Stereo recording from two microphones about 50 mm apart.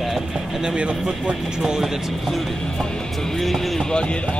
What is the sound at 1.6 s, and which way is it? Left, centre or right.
Speech, centre.